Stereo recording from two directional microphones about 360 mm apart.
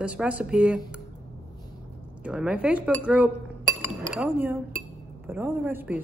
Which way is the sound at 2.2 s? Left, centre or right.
Centre.